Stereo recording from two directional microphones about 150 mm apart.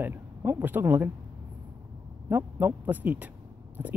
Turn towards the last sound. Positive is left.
turn(degrees=-10)  # may be behind; listen again after turning